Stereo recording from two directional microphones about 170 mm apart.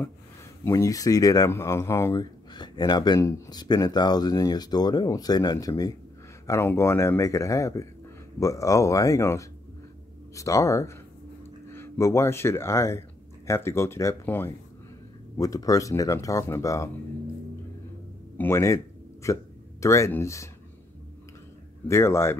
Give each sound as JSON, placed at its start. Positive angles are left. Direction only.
{"t": 0.7, "sound": "a man's voice", "side_deg": 20}
{"t": 18.4, "sound": "a man's voice", "side_deg": 15}
{"t": 21.8, "sound": "a man's voice", "side_deg": 15}